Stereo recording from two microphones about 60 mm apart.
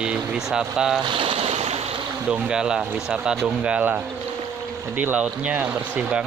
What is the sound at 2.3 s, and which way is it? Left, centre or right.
Speech, centre.